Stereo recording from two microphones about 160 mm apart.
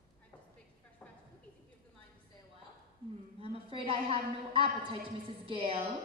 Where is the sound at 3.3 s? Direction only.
35° right (ahead or behind).